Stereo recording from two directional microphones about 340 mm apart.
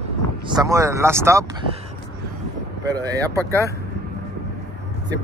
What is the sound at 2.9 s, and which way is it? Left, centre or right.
Speech, centre.